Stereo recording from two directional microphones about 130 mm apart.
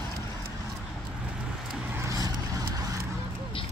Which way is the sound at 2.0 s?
25° right (ahead or behind).